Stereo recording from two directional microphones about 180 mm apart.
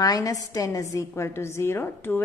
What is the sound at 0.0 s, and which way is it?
A woman's voice, 20° left (ahead or behind).